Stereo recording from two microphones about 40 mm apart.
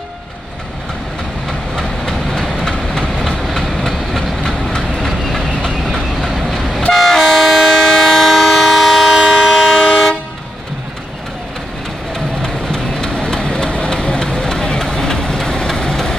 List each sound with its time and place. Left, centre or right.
1.8 s vehicle: centre
2.7 s train: centre
6.2 s vehicle: centre
6.9 s train: centre
9.3 s train: centre
9.8 s toot: centre
12.4 s vehicle: centre